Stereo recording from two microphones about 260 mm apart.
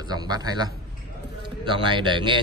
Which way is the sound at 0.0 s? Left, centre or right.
Centre.